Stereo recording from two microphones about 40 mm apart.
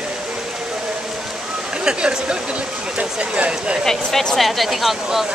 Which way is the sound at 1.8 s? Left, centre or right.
Right.